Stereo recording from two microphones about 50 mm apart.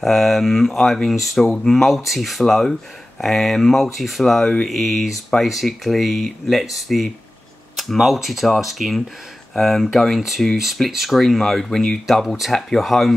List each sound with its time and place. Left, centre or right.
0.0 s speech: centre
2.0 s speech: centre